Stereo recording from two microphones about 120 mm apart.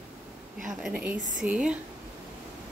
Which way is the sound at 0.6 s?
5° right (ahead or behind).